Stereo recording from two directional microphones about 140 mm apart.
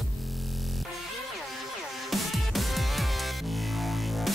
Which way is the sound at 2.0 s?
Centre (ahead or behind).